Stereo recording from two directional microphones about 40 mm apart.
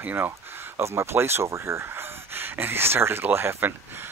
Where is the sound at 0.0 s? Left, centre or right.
Right.